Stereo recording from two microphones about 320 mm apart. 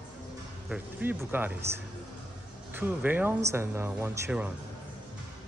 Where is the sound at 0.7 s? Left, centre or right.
Centre.